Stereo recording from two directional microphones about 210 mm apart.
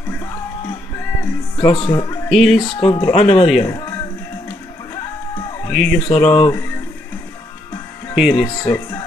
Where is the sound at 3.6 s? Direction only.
15° left (ahead or behind).